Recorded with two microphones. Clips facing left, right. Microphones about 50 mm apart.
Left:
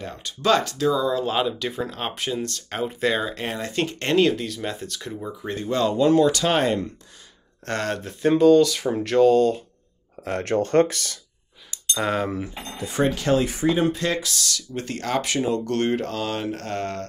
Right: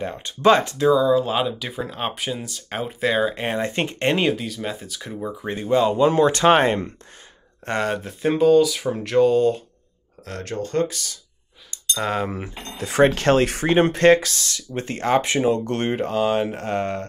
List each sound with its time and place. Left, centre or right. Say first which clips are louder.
0.0 s speech: right 7 dB; right
0.8 s speech: right 7 dB; centre
3.3 s speech: right 3 dB; right
4.4 s speech: even; centre; by 6.9 s right
7.6 s speech: right 3 dB; centre
10.4 s speech: left 4 dB; left
12.0 s speech: even; centre
12.7 s speech: right 6 dB; right
14.3 s speech: even; right